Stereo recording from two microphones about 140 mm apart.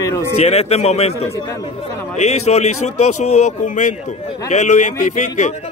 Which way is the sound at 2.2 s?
55° left (ahead or behind).